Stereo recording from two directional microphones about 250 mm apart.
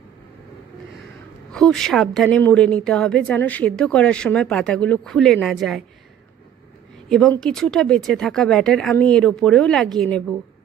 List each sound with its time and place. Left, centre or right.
1.5 s a woman's voice: centre
7.1 s a woman's voice: centre